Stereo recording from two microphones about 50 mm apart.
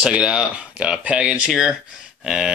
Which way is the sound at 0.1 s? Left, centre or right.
Centre.